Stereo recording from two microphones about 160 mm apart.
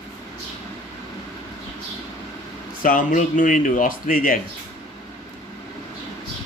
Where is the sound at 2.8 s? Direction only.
60° left (ahead or behind).